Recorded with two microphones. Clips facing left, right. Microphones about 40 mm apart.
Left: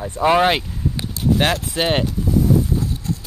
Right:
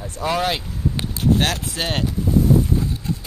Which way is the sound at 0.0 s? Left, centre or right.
Left.